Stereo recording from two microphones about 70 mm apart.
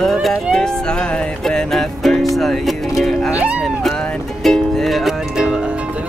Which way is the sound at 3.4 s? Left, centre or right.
Centre.